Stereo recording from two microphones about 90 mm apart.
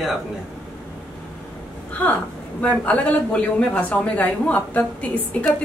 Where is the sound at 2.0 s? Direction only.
15° left (ahead or behind).